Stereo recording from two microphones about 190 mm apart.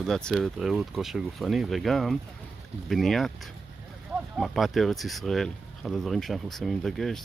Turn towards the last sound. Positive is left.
turn(degrees=0)  # may be behind; listen again after turning